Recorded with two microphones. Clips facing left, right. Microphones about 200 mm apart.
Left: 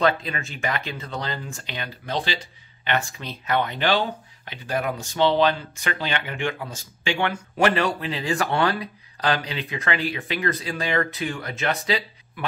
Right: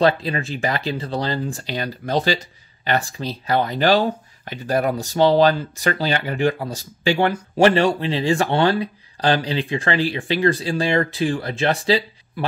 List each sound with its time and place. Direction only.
0.0 s speech: 30° right (ahead or behind)